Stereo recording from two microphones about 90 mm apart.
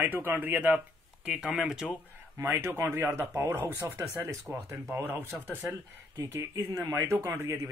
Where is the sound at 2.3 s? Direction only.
30° right (ahead or behind).